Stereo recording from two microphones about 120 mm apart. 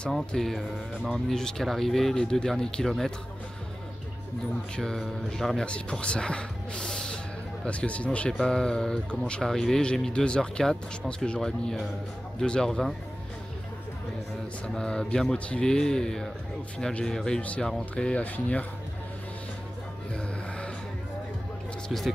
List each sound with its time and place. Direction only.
0.0 s speech: 5° left (ahead or behind)
4.7 s speech: 5° left (ahead or behind)
14.7 s speech: 5° left (ahead or behind)
20.2 s music: 10° left (ahead or behind)
21.8 s speech: centre (ahead or behind)